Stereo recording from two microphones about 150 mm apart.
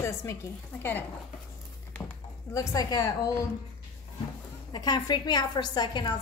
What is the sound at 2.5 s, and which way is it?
Speech, 25° left (ahead or behind).